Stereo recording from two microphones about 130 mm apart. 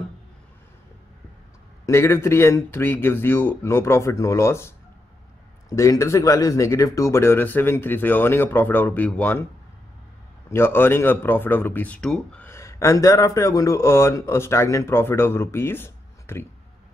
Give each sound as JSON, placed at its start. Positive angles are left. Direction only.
{"t": 1.9, "sound": "speech", "side_deg": 20}
{"t": 10.5, "sound": "speech", "side_deg": 15}
{"t": 12.4, "sound": "speech", "side_deg": 20}